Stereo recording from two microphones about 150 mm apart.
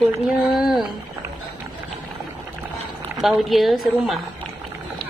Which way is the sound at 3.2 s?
Centre (ahead or behind).